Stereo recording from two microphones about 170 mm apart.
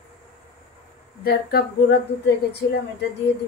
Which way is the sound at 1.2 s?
65° left (ahead or behind).